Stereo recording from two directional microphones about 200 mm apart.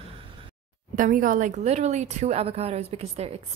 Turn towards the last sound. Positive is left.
turn(degrees=-30)  # may be behind; listen again after turning